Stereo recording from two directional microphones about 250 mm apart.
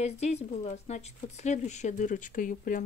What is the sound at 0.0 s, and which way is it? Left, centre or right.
Speech, left.